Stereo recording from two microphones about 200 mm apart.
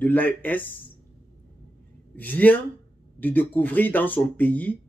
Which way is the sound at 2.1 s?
10° left (ahead or behind).